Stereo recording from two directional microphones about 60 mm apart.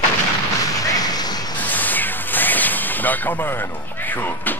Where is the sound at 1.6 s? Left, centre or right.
Left.